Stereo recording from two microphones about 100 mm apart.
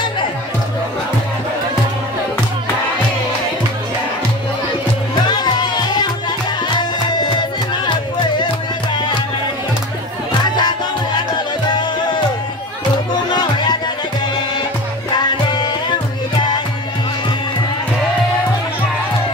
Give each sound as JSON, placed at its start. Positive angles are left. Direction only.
{"t": 5.2, "sound": "music", "side_deg": 45}
{"t": 10.4, "sound": "music", "side_deg": 45}
{"t": 13.3, "sound": "music", "side_deg": 45}